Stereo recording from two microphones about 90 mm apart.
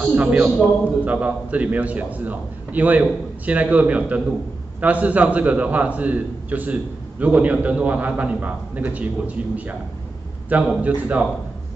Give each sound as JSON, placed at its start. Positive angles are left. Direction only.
{"t": 0.0, "sound": "a man's voice", "side_deg": -10}